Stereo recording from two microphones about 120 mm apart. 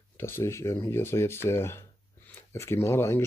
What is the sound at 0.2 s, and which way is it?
Speech, 20° left (ahead or behind).